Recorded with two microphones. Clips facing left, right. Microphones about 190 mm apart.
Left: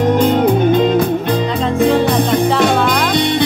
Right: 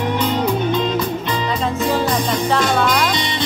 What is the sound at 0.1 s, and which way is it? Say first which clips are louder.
Music: left 6 dB; 50° left (ahead or behind).